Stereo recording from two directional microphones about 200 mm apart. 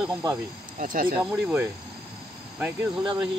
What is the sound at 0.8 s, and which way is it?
Speech, 45° right (ahead or behind).